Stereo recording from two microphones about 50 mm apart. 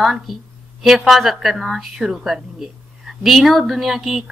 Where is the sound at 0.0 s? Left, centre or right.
Centre.